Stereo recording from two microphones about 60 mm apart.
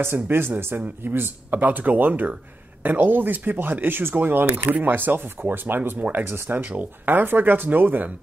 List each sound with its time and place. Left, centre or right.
0.0 s speech: right